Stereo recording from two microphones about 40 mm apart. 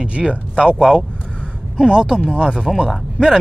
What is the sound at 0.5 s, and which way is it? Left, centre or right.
Speech, centre.